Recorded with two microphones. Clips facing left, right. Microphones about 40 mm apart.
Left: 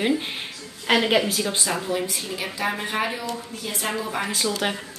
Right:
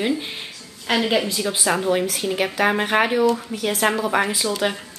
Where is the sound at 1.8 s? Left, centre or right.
Right.